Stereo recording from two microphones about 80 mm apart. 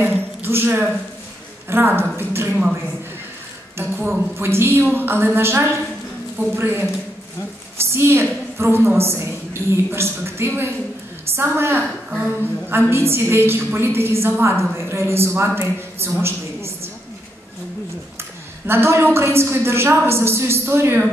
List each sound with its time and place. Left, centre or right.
0.0 s a sound: right
1.7 s a woman's voice: right
3.7 s a woman's voice: right
7.9 s a woman's voice: right
18.7 s a woman's voice: right